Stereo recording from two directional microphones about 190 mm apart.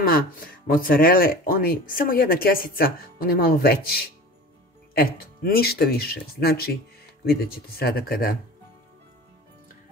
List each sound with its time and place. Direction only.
0.7 s speech: 50° left (ahead or behind)